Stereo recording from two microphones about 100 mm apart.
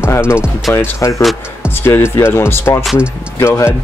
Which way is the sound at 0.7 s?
25° left (ahead or behind).